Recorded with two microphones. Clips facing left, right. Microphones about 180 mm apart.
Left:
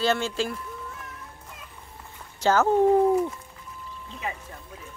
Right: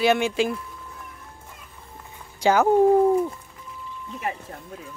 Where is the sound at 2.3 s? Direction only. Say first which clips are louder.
Right 2 dB; 15° right (ahead or behind).